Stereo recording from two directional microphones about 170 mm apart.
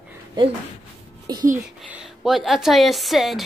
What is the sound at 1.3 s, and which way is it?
Speech, 25° right (ahead or behind).